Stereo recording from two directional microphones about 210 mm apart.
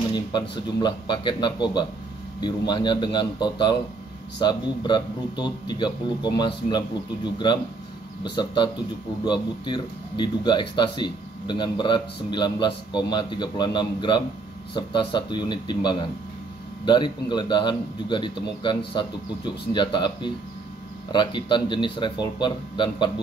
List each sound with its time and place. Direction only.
0.1 s speech: 20° left (ahead or behind)